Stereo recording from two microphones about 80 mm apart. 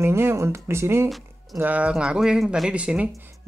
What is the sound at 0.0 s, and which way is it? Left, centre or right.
Speech, right.